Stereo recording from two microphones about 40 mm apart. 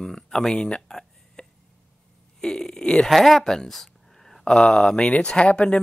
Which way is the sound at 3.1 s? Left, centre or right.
Centre.